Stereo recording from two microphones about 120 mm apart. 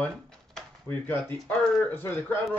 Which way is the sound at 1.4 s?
5° left (ahead or behind).